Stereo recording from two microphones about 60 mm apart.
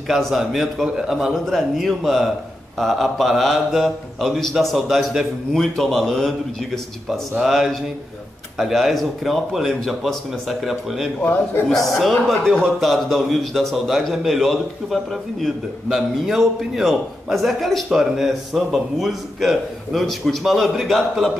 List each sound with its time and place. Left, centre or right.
0.1 s speech: centre
11.2 s a man's voice: left
11.6 s speech: centre